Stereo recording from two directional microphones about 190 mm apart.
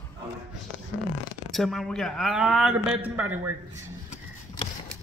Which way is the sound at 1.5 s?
Centre (ahead or behind).